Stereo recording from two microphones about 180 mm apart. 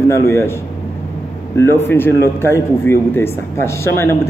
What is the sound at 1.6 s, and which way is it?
A man's voice, 15° left (ahead or behind).